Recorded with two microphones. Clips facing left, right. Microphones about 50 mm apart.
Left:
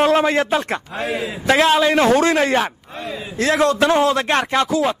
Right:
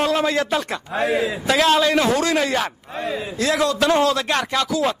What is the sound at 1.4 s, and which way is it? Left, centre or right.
Speech, left.